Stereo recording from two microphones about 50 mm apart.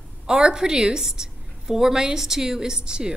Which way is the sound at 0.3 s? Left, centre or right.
Centre.